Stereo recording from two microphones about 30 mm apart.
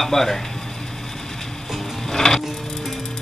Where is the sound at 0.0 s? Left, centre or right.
Centre.